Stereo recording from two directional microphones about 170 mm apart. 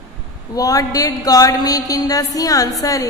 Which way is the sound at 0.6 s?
20° left (ahead or behind).